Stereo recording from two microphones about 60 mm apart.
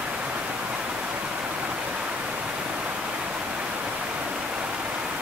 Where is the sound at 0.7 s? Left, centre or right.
Centre.